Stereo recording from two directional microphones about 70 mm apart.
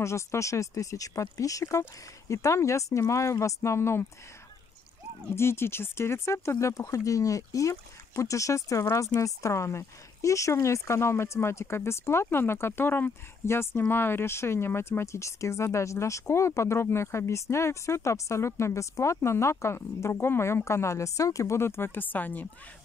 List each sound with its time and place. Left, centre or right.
0.0 s speech: left
5.3 s speech: left